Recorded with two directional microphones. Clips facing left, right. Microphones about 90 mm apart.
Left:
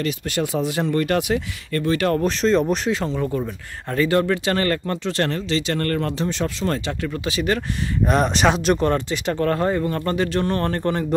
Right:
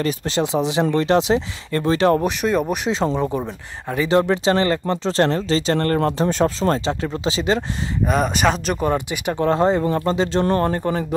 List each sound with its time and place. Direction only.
0.0 s speech: 25° right (ahead or behind)
2.2 s speech: 10° right (ahead or behind)
2.9 s speech: 25° right (ahead or behind)
5.9 s speech: 40° right (ahead or behind); by 7.6 s 25° right (ahead or behind)
8.0 s speech: centre (ahead or behind)